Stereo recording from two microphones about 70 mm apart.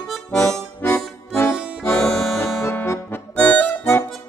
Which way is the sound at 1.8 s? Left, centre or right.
Centre.